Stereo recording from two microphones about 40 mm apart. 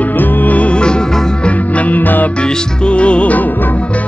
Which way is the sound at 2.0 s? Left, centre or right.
Left.